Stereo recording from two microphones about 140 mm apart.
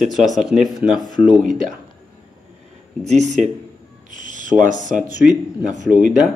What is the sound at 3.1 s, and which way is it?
Speech, 55° right (ahead or behind).